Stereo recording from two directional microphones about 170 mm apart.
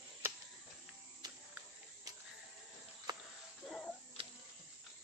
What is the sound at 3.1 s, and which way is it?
Cricket, 25° right (ahead or behind).